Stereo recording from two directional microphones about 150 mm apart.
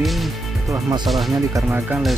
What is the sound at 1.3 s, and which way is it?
Speech, 20° right (ahead or behind).